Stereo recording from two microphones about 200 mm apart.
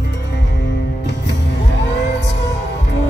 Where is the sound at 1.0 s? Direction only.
60° left (ahead or behind).